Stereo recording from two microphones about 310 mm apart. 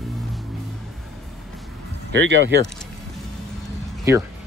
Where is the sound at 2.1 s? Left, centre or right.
Right.